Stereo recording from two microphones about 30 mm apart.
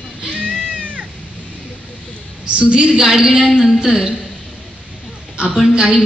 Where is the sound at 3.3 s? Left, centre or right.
Centre.